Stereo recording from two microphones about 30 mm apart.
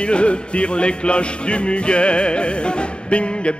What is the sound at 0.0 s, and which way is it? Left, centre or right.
Music, left.